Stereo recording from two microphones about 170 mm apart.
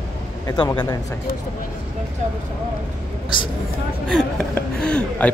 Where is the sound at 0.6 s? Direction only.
25° left (ahead or behind).